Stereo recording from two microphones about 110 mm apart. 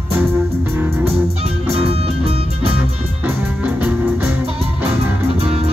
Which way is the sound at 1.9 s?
65° right (ahead or behind).